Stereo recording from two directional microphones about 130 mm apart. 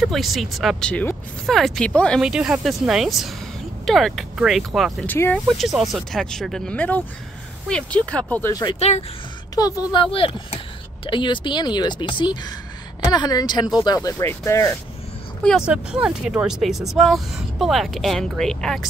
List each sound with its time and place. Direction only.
0.0 s speech: centre (ahead or behind)
2.2 s speech: 5° right (ahead or behind)
5.0 s speech: 15° left (ahead or behind)
5.5 s speech: centre (ahead or behind)
8.7 s speech: 55° left (ahead or behind)
9.6 s speech: 30° left (ahead or behind)
10.1 s a woman's voice: 45° left (ahead or behind); by 14.8 s 20° left (ahead or behind)
15.6 s speech: 10° right (ahead or behind)